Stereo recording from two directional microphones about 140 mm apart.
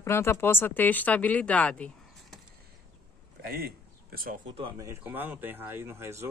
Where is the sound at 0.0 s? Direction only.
20° left (ahead or behind).